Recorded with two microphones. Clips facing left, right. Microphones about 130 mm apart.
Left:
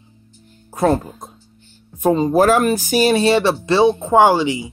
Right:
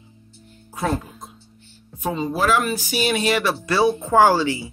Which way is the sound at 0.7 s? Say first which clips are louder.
Left 8 dB; 40° left (ahead or behind).